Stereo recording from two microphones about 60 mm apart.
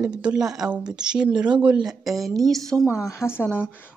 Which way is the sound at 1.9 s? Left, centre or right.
Centre.